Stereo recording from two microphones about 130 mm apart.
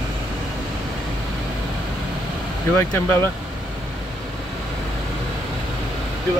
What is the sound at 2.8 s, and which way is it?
Speech, 15° left (ahead or behind).